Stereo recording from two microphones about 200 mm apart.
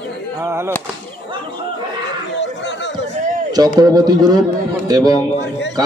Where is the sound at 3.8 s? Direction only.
20° right (ahead or behind).